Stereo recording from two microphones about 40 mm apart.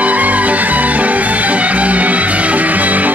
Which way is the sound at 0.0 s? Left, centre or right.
Right.